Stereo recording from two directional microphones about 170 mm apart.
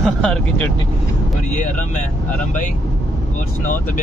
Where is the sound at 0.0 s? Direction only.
Centre (ahead or behind).